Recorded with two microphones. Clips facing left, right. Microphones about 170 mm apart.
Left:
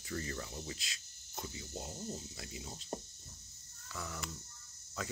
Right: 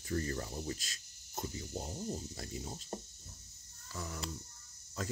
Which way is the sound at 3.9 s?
35° right (ahead or behind).